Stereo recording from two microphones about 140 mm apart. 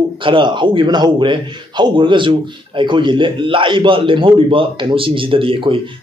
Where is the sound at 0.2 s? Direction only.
35° right (ahead or behind).